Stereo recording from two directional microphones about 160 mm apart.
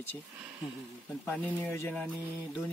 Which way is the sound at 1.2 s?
10° left (ahead or behind).